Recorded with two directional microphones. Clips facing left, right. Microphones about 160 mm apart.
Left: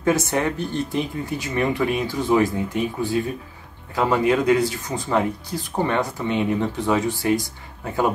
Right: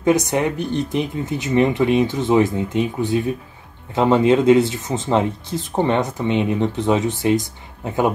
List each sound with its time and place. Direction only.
0.0 s speech: 20° right (ahead or behind)